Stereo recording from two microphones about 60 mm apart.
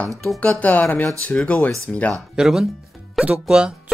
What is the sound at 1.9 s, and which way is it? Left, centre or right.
Speech, centre.